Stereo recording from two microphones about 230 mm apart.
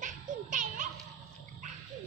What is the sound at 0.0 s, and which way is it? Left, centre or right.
Children playing, right.